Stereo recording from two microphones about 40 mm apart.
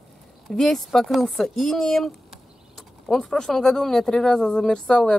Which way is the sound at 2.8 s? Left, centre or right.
Centre.